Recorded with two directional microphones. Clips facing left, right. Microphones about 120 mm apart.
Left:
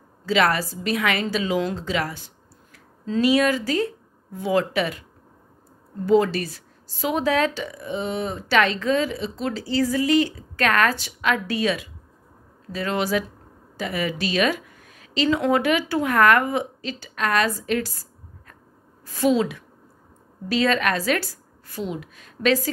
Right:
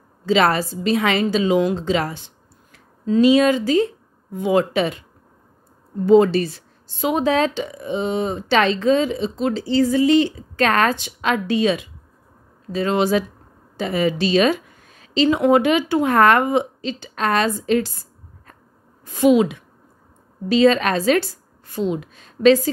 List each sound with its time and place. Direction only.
0.2 s speech: 25° right (ahead or behind)
6.0 s speech: 25° right (ahead or behind)
19.0 s speech: 20° right (ahead or behind)